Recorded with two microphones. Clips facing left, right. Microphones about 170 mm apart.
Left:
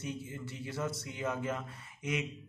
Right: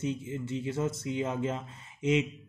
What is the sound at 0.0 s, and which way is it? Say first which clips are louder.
Speech: right 7 dB; 20° right (ahead or behind).